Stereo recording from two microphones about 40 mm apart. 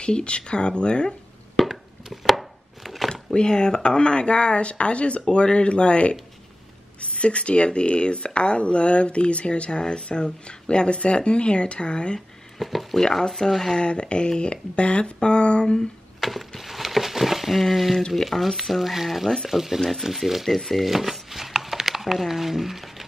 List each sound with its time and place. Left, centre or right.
0.0 s speech: left
1.6 s chop: centre
2.2 s chopping: centre
3.1 s speech: centre
12.5 s speech: centre
13.0 s speech: centre
13.7 s speech: left
16.2 s a sound: centre
18.1 s speech: centre
20.4 s speech: centre
20.9 s a sound: centre